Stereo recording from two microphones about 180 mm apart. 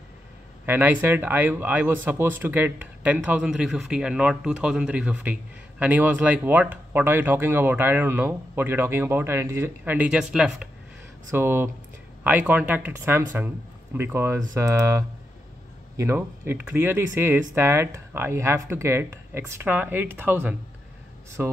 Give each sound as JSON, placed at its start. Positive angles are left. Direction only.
{"t": 0.7, "sound": "speech", "side_deg": -10}